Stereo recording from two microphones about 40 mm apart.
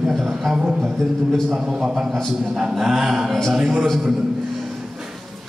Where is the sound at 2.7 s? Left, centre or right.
Centre.